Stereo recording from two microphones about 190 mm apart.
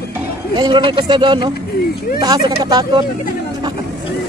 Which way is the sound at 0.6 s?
25° right (ahead or behind).